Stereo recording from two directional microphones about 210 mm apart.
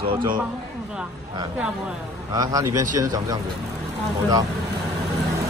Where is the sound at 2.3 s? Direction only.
15° right (ahead or behind).